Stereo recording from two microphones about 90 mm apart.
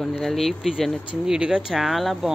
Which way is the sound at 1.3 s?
10° right (ahead or behind).